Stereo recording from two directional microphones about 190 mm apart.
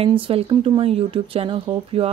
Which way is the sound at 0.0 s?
30° right (ahead or behind).